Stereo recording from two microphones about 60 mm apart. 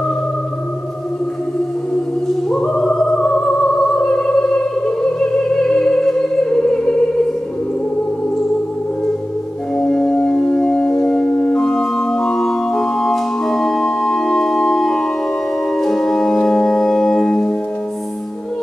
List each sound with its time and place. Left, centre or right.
2.5 s music: centre
9.8 s music: centre
11.5 s organ: centre